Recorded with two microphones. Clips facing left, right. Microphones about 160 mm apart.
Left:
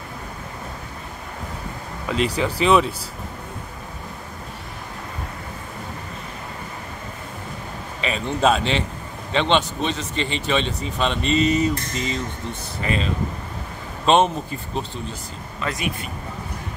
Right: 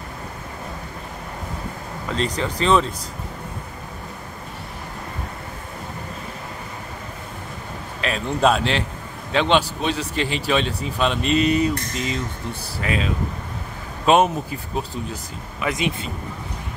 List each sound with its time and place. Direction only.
2.0 s speech: 10° left (ahead or behind)
8.0 s a man's voice: centre (ahead or behind)
15.6 s speech: 20° right (ahead or behind)